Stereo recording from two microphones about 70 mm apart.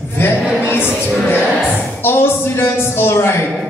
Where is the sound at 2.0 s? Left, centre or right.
Left.